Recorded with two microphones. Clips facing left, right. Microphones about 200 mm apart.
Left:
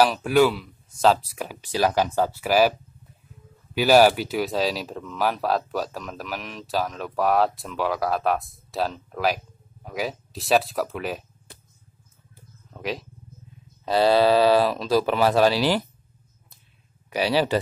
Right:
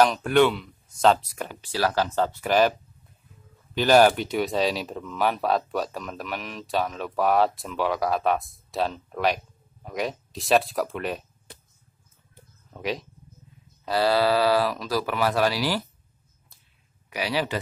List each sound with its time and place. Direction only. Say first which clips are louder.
0.0 s speech: left 1 dB; 5° left (ahead or behind)
1.6 s speech: left 3 dB; 15° left (ahead or behind)
3.7 s speech: left 1 dB; 5° left (ahead or behind)
12.7 s speech: right 1 dB; centre (ahead or behind)
13.8 s speech: left 4 dB; 20° left (ahead or behind)
17.1 s speech: left 5 dB; 30° left (ahead or behind)